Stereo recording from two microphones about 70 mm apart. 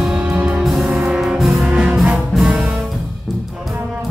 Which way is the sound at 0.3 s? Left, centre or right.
Right.